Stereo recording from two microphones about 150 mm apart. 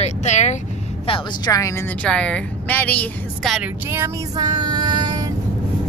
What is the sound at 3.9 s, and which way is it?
Music, 15° right (ahead or behind).